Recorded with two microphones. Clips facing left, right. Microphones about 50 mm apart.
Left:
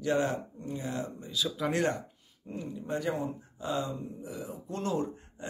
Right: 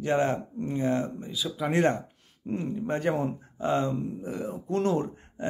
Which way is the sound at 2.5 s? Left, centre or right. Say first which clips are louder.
Right 6 dB; right.